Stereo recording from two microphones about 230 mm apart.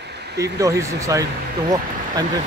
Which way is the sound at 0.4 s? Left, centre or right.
Centre.